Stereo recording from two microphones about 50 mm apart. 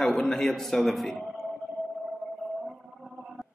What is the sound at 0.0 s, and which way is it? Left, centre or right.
A man's voice, centre.